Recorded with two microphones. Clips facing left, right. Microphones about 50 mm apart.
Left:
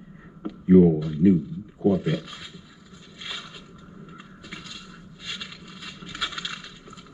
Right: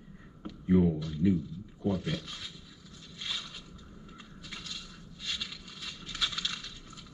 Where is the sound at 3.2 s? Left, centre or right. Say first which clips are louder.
Left 2 dB; centre.